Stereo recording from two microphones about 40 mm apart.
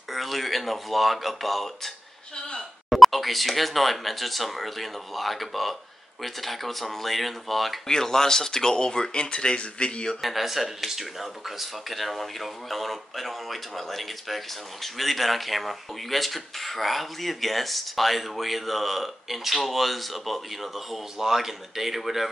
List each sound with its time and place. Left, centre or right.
0.1 s speech: centre
2.9 s speech: centre
7.9 s speech: centre
10.2 s speech: centre